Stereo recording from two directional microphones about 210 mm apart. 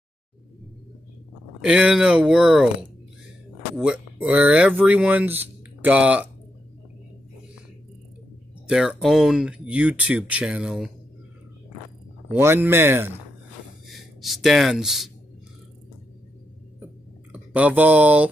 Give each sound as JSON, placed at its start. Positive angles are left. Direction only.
{"t": 1.6, "sound": "speech", "side_deg": -5}
{"t": 8.6, "sound": "speech", "side_deg": -5}
{"t": 12.3, "sound": "speech", "side_deg": -10}
{"t": 13.8, "sound": "speech", "side_deg": 0}
{"t": 17.3, "sound": "speech", "side_deg": -5}